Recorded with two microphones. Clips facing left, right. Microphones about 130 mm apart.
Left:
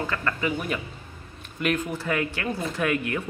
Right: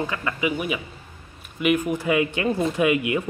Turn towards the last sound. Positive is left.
turn(degrees=-15)  # may be behind; listen again after turning